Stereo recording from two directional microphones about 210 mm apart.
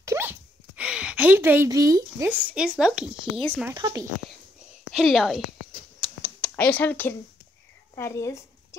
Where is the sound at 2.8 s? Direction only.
5° right (ahead or behind).